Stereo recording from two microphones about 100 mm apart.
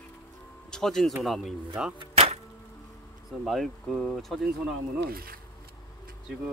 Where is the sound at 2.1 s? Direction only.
90° right.